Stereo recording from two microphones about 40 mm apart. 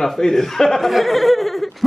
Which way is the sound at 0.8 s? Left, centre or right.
Centre.